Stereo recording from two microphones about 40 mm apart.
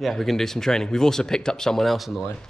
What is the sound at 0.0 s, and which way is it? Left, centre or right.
Speech, centre.